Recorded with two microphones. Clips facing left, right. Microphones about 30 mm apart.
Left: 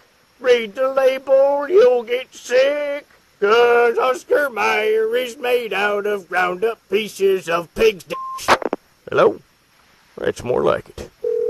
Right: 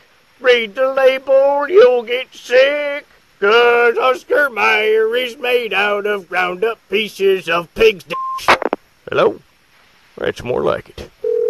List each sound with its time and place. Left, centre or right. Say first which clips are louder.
0.4 s a man's voice: right 3 dB; right
9.0 s a sound: even; right
10.1 s speech: right 2 dB; right
10.5 s speech: even; centre
11.3 s dial tone: right 4 dB; right